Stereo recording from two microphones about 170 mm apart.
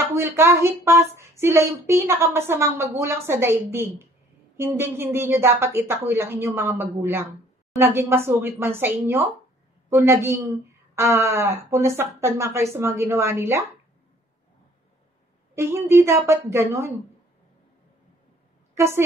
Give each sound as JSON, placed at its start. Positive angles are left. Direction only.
{"t": 0.1, "sound": "speech", "side_deg": -15}
{"t": 15.5, "sound": "speech", "side_deg": -15}
{"t": 18.8, "sound": "speech", "side_deg": -15}